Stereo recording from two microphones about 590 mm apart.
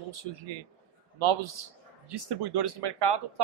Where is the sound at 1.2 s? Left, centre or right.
Right.